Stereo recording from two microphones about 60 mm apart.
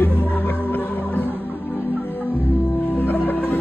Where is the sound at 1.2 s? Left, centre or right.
Right.